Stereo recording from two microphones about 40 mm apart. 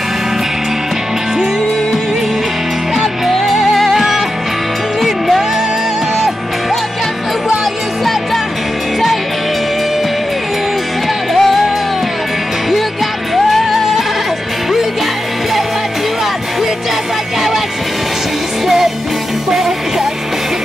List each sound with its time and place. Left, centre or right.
3.3 s music: centre
11.3 s music: centre
13.3 s music: centre